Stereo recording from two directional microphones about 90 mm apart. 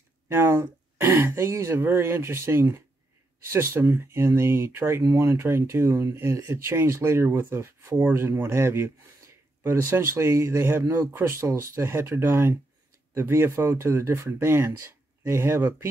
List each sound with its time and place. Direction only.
0.3 s speech: 25° right (ahead or behind)